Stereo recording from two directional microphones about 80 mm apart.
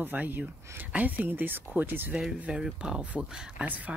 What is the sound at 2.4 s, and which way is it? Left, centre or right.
Speech, centre.